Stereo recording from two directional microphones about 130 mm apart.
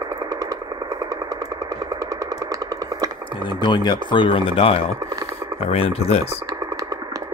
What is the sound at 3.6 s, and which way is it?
Speech, 35° left (ahead or behind).